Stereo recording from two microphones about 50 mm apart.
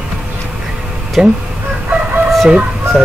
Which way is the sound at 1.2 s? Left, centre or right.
Centre.